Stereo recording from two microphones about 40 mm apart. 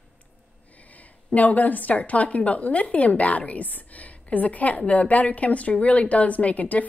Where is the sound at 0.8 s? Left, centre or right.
Left.